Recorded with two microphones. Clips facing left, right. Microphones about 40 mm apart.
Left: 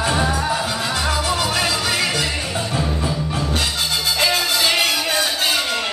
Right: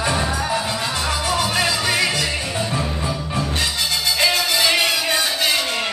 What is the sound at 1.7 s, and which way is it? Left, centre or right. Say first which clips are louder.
Music: right 1 dB; centre.